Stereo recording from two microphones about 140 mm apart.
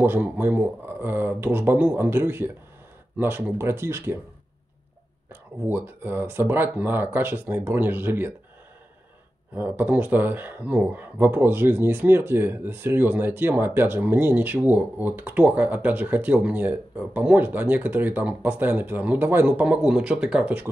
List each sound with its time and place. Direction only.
0.0 s speech: 15° right (ahead or behind)
5.3 s speech: 15° right (ahead or behind)
9.6 s speech: 10° right (ahead or behind)